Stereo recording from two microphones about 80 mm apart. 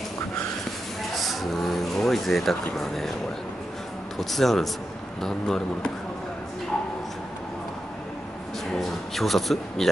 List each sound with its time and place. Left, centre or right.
1.1 s a sound: centre
2.0 s speech: centre
4.2 s speech: centre
8.7 s a man's voice: centre